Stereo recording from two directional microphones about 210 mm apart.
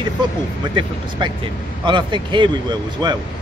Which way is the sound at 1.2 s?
20° right (ahead or behind).